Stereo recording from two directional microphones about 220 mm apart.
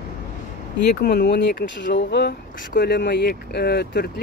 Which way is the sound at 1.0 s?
50° left (ahead or behind).